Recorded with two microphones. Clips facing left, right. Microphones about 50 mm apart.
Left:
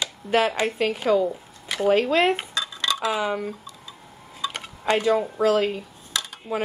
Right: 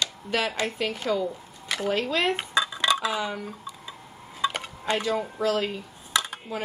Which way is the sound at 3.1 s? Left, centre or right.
Centre.